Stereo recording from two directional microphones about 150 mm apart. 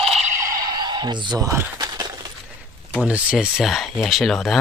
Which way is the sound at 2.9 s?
10° right (ahead or behind).